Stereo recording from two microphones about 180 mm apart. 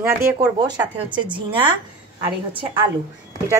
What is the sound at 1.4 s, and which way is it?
A woman's voice, 25° right (ahead or behind).